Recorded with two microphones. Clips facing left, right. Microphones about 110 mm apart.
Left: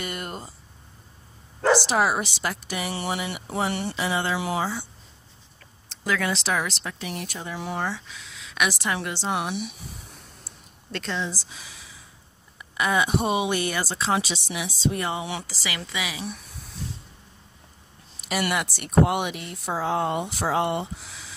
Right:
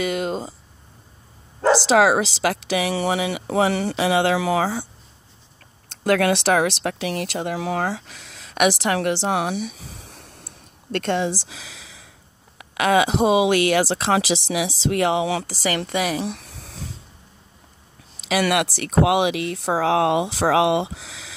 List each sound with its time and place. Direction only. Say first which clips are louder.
0.0 s speech: right 10 dB; 90° right
1.7 s speech: right 5 dB; 90° right
5.9 s speech: right 8 dB; 65° right (ahead or behind); by 8.0 s 90° right
8.0 s speech: right 1 dB; 65° right (ahead or behind); by 10.2 s 90° right
10.4 s a sound: right 4 dB; 55° right (ahead or behind); by 12.1 s 90° right
12.5 s speech: right 6 dB; 90° right
15.4 s speech: right 9 dB; 50° right (ahead or behind)
16.2 s a sound: right 7 dB; 90° right
18.2 s speech: right 6 dB; 80° right